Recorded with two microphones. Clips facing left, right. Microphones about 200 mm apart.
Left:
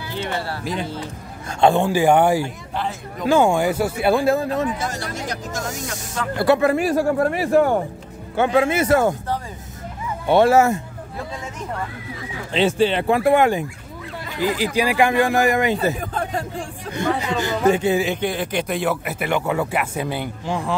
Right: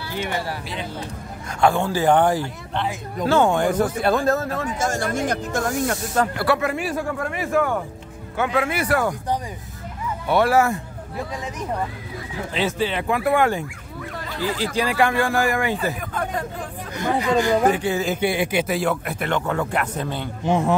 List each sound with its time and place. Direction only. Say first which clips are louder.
0.1 s speech: even; 15° right (ahead or behind)
1.6 s a man's voice: left 3 dB; 20° left (ahead or behind)
4.6 s speech: right 2 dB; 45° right (ahead or behind)
6.3 s speech: left 5 dB; 25° left (ahead or behind)
6.7 s a man's voice: left 7 dB; 40° left (ahead or behind); by 9.1 s 25° left (ahead or behind)
10.2 s speech: left 4 dB; 25° left (ahead or behind)
12.5 s speech: left 6 dB; 30° left (ahead or behind)
18.0 s a man's voice: right 1 dB; 5° right (ahead or behind); by 20.2 s 10° left (ahead or behind)
20.4 s speech: right 7 dB; 20° right (ahead or behind)